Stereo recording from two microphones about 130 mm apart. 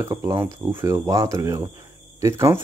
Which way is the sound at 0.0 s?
20° right (ahead or behind).